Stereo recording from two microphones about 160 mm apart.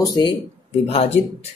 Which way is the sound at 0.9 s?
40° left (ahead or behind).